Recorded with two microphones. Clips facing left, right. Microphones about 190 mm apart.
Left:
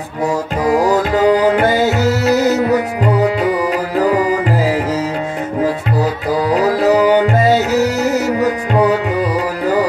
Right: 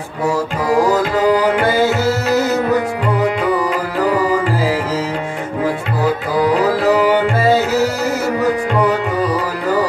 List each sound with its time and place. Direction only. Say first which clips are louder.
1.1 s music: left 2 dB; 40° left (ahead or behind)
6.8 s music: left 2 dB; 40° left (ahead or behind)